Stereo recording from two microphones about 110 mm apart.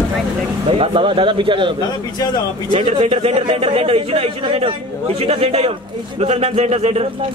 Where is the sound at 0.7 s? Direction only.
55° right (ahead or behind).